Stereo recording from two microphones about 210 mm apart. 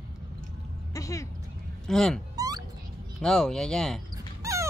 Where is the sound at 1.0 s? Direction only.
15° left (ahead or behind).